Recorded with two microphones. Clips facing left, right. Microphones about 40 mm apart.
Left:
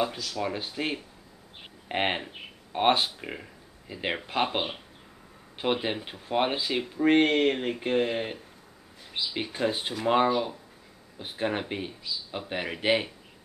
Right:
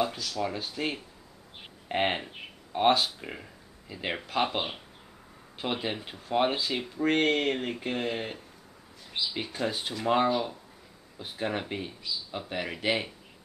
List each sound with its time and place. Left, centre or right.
0.1 s speech: centre